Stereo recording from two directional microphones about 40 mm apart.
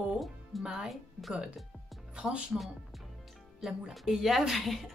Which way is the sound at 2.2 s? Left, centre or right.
Centre.